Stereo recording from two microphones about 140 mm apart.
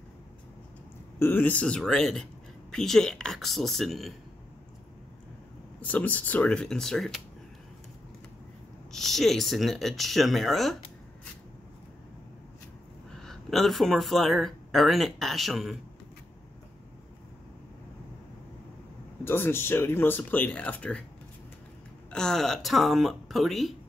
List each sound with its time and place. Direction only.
1.2 s speech: 15° left (ahead or behind)
5.8 s speech: 10° left (ahead or behind)
8.9 s speech: centre (ahead or behind)
13.2 s speech: centre (ahead or behind)
19.2 s speech: 15° left (ahead or behind)
22.1 s speech: 5° left (ahead or behind)